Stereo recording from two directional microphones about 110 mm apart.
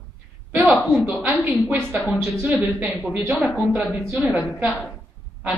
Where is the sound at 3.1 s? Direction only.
15° right (ahead or behind).